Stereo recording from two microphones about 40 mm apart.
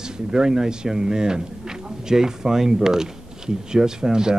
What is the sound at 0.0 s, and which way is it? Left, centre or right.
Speech, centre.